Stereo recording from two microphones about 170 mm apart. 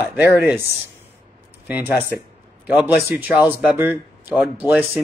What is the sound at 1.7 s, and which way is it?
Speech, 10° right (ahead or behind).